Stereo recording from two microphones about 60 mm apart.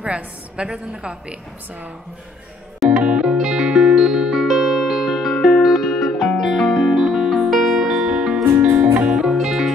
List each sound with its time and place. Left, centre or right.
0.0 s a woman's voice: centre
2.8 s music: centre